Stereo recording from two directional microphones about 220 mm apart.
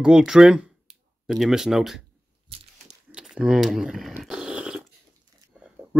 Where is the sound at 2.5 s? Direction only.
25° right (ahead or behind).